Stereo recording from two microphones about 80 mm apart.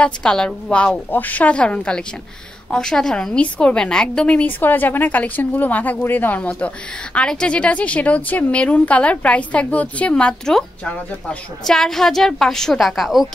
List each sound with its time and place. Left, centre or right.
0.0 s a woman's voice: centre